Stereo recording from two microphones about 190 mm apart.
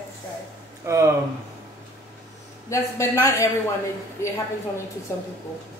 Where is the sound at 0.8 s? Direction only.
15° right (ahead or behind).